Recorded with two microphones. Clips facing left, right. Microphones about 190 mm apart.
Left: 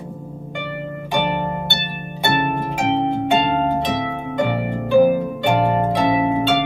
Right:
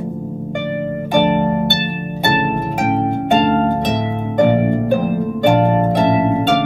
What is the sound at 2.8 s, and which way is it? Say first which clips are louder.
Harp: right 1 dB; 45° right (ahead or behind).